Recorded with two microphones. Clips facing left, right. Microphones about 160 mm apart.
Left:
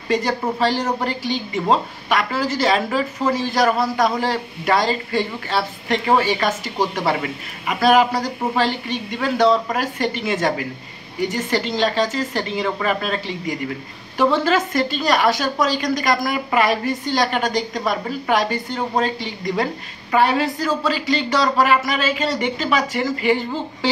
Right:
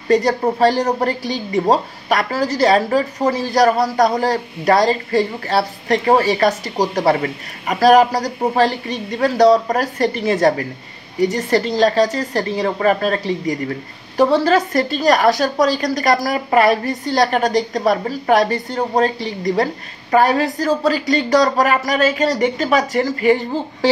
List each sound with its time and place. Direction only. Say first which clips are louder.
0.1 s a woman's voice: right 5 dB; 40° right (ahead or behind)